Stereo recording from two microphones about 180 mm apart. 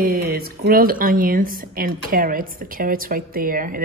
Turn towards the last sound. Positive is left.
turn(degrees=-50)  # may be behind; listen again after turning